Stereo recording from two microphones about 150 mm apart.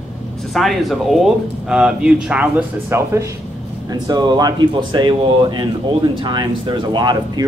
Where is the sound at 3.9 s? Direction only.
30° right (ahead or behind).